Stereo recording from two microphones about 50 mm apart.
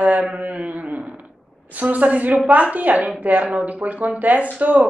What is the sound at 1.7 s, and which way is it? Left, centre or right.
Speech, right.